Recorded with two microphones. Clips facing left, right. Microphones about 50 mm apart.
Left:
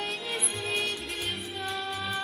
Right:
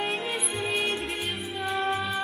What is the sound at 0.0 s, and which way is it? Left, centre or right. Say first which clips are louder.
Music: right 5 dB; right.